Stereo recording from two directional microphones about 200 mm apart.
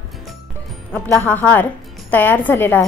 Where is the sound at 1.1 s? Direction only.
10° left (ahead or behind).